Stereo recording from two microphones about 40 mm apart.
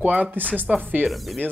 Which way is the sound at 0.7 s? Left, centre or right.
Centre.